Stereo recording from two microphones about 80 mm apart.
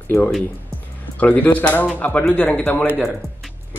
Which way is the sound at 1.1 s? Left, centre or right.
Left.